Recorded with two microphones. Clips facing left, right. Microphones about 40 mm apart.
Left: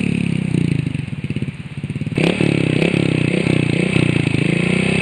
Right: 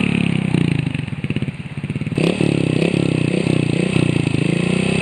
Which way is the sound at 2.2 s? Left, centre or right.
Left.